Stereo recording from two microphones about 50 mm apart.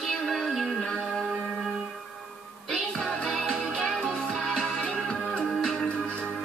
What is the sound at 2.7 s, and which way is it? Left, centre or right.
Music, centre.